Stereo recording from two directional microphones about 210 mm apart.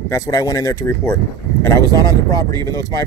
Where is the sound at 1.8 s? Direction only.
20° right (ahead or behind).